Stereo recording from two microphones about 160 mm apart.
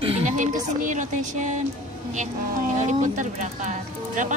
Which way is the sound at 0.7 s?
50° right (ahead or behind).